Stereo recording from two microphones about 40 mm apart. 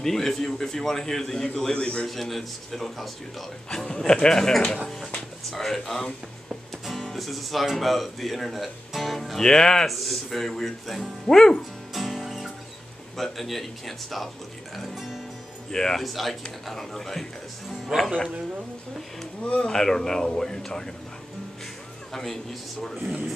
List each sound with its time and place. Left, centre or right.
0.0 s a man's voice: centre
2.0 s speech: centre
3.7 s a man's voice: centre
9.8 s speech: centre
11.9 s music: centre
13.2 s speech: centre
15.7 s a man's voice: centre
16.0 s a man's voice: centre
17.9 s speech: centre
19.4 s speech: left
19.7 s a man's voice: centre
22.1 s a man's voice: centre